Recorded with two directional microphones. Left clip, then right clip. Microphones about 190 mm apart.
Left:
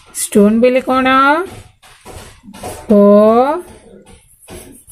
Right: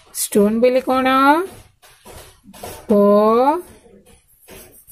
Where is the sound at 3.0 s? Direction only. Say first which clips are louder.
Left 5 dB; 25° right (ahead or behind).